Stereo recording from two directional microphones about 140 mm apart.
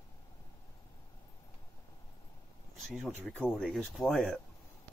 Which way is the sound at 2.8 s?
Centre (ahead or behind).